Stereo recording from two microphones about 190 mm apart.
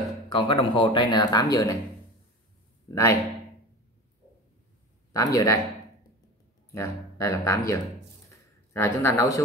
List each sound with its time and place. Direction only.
0.3 s speech: 25° left (ahead or behind)
2.9 s speech: 15° left (ahead or behind)
5.1 s speech: 20° left (ahead or behind)
6.7 s speech: 15° left (ahead or behind)
8.3 s a sound: 15° left (ahead or behind)